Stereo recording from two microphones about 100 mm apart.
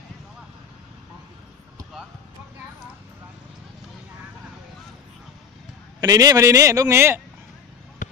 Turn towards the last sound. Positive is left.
turn(degrees=-25)  # may be behind; listen again after turning